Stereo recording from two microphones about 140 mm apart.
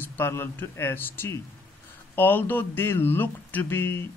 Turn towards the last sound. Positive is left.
turn(degrees=15)  # may be behind; listen again after turning